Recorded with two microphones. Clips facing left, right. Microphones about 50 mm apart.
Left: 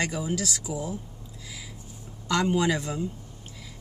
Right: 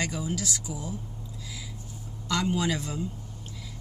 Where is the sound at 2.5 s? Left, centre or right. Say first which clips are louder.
Left 4 dB; centre.